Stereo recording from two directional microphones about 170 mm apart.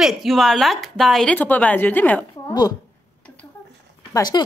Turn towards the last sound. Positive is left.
turn(degrees=25)  # may be behind; listen again after turning